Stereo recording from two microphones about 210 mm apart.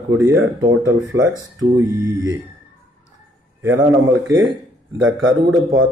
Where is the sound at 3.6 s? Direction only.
10° right (ahead or behind).